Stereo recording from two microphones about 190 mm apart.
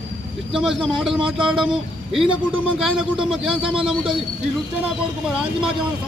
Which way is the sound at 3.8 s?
5° right (ahead or behind).